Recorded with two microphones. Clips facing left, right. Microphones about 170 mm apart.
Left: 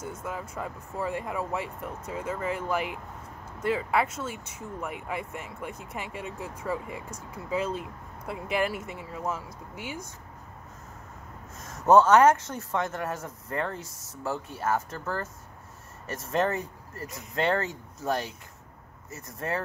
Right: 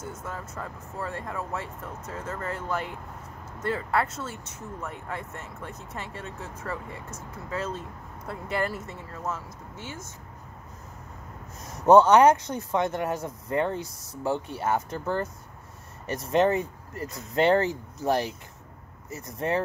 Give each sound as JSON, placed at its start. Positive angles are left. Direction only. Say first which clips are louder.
{"t": 0.0, "sound": "speech", "louder": "left 1 dB", "side_deg": 10}
{"t": 11.6, "sound": "a sound", "louder": "right 4 dB", "side_deg": -35}
{"t": 12.0, "sound": "speech", "louder": "right 1 dB", "side_deg": -15}
{"t": 16.3, "sound": "speech", "louder": "right 5 dB", "side_deg": -20}
{"t": 17.4, "sound": "speech", "louder": "right 5 dB", "side_deg": -30}
{"t": 19.1, "sound": "speech", "louder": "right 5 dB", "side_deg": -20}